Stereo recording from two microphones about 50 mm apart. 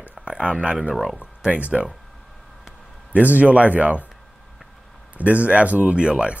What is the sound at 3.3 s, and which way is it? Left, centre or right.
Speech, right.